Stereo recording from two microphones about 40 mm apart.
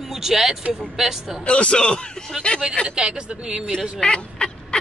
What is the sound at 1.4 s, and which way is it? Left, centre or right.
Speech, left.